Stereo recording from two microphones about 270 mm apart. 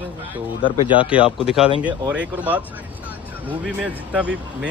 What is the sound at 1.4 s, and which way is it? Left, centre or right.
Speech, centre.